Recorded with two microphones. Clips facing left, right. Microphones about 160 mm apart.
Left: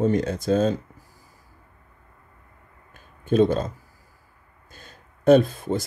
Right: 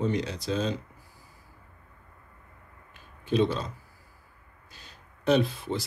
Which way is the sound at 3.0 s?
50° left (ahead or behind).